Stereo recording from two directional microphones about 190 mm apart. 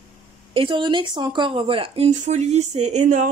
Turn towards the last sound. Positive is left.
turn(degrees=-40)  # may be behind; listen again after turning